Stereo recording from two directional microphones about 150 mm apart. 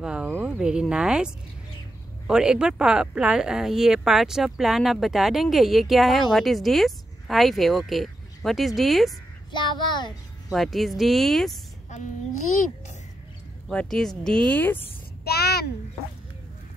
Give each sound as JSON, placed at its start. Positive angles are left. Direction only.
{"t": 0.0, "sound": "speech", "side_deg": -5}
{"t": 9.5, "sound": "a child's voice", "side_deg": 30}
{"t": 10.5, "sound": "speech", "side_deg": 0}
{"t": 11.9, "sound": "a child's voice", "side_deg": 55}
{"t": 13.7, "sound": "a woman's voice", "side_deg": 5}
{"t": 15.2, "sound": "a child's voice", "side_deg": 90}